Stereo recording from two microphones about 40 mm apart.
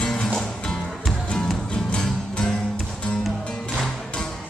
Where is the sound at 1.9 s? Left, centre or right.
Left.